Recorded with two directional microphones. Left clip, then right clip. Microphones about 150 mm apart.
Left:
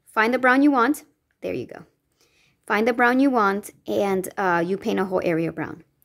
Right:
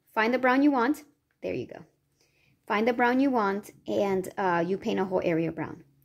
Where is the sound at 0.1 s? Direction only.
25° left (ahead or behind).